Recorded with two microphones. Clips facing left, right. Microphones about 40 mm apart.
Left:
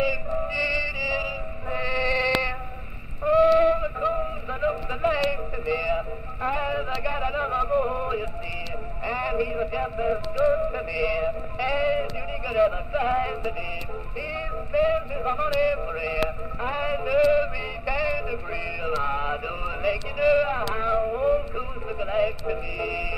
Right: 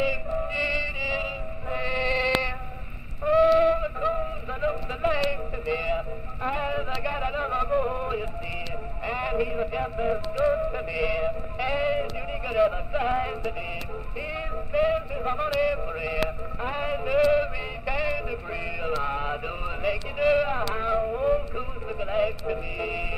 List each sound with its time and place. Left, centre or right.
0.5 s music: right
1.9 s bleat: centre
3.3 s a sound: centre
5.9 s synthetic singing: centre
9.0 s a sound: centre
9.8 s music: centre
10.9 s music: centre
12.0 s music: centre
14.3 s music: centre
14.9 s yodeling: centre
16.6 s music: centre
22.8 s music: centre